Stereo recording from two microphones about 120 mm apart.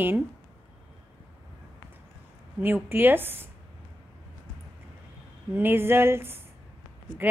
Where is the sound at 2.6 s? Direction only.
15° right (ahead or behind).